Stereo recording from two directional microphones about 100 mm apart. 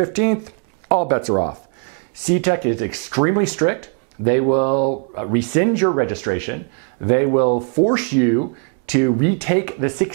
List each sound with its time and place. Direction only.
0.0 s speech: 15° right (ahead or behind)